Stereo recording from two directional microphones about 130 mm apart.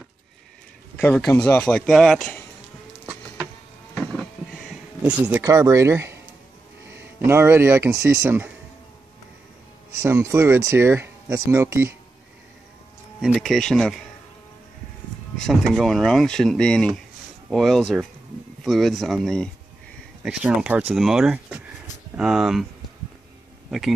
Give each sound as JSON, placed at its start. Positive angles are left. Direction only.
{"t": 1.0, "sound": "speech", "side_deg": 5}
{"t": 3.9, "sound": "vehicle", "side_deg": 5}
{"t": 5.4, "sound": "speech", "side_deg": -25}
{"t": 10.0, "sound": "speech", "side_deg": -20}
{"t": 13.2, "sound": "speech", "side_deg": 0}
{"t": 15.4, "sound": "speech", "side_deg": 0}
{"t": 20.2, "sound": "speech", "side_deg": -10}